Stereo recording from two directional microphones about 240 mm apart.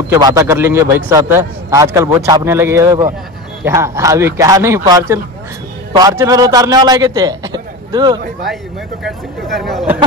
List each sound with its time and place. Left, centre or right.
0.3 s a man's voice: centre
9.0 s speech: centre